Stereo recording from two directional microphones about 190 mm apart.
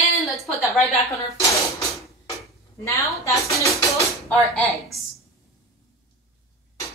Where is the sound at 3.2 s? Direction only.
15° left (ahead or behind).